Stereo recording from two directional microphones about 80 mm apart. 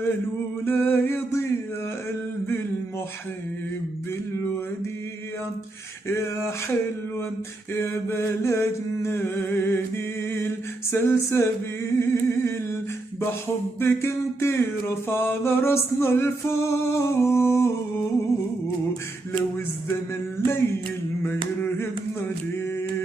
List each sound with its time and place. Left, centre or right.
0.7 s music: left
6.0 s music: left
7.7 s music: left
10.3 s a capella: left
13.2 s music: left
20.3 s a sound: left